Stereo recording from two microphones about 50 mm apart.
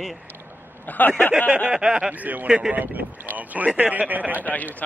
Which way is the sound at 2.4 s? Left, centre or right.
Centre.